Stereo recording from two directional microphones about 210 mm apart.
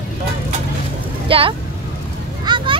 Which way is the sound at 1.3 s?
25° right (ahead or behind).